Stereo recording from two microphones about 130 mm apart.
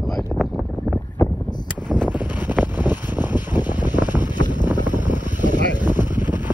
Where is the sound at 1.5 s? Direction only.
35° left (ahead or behind).